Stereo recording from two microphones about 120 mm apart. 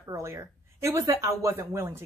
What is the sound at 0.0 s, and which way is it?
Speech, 25° right (ahead or behind).